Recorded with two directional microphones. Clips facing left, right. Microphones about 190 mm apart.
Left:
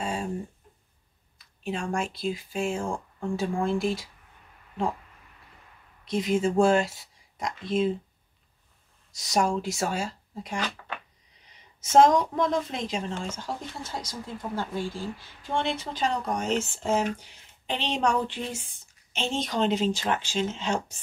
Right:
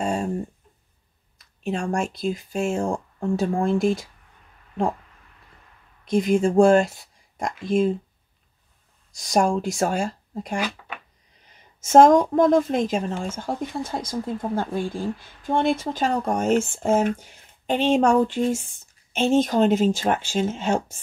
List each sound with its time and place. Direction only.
0.0 s a sound: 45° right (ahead or behind)
1.6 s speech: 45° right (ahead or behind)
6.0 s speech: 50° right (ahead or behind)
9.1 s speech: 50° right (ahead or behind)